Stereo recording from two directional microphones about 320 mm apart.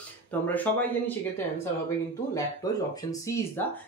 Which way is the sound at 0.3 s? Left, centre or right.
Centre.